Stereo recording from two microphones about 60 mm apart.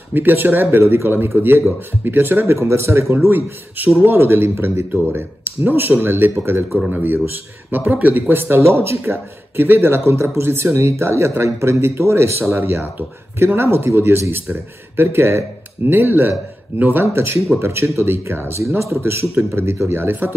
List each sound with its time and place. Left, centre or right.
0.1 s speech: right
12.5 s speech: right